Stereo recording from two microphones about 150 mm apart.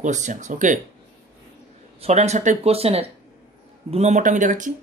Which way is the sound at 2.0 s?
45° right (ahead or behind).